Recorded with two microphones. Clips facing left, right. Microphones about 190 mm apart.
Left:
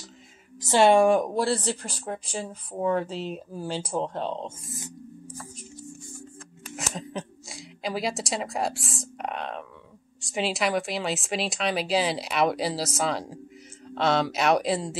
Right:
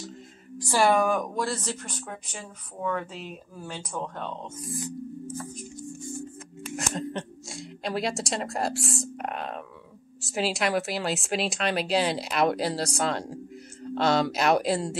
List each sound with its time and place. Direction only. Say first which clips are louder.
0.6 s speech: left 4 dB; 25° left (ahead or behind)
6.8 s a woman's voice: right 2 dB; centre (ahead or behind)